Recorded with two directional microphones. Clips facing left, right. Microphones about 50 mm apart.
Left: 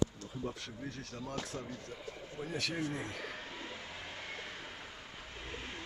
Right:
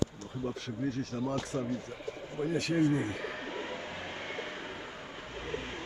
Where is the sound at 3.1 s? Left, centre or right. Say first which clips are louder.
Right 6 dB; right.